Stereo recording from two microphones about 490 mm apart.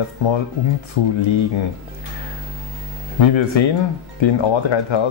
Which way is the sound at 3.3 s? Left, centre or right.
Left.